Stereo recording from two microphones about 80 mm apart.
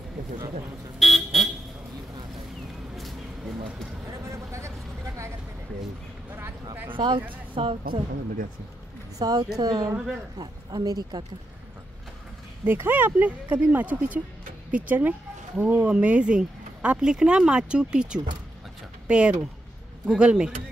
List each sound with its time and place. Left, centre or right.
0.9 s vehicle: centre
4.1 s a sound: right
6.3 s speech: right
6.9 s speech: right
7.5 s a woman's voice: right
9.2 s speech: right
9.9 s speech: centre
10.4 s speech: right
12.6 s speech: right; by 20.5 s centre